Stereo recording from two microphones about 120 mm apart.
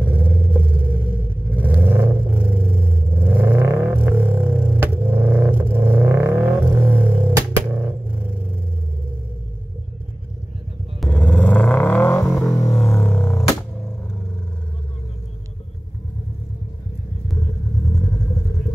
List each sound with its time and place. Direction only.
0.0 s vehicle: 15° right (ahead or behind)
11.1 s vehicle: 15° left (ahead or behind)
12.5 s music: 25° left (ahead or behind)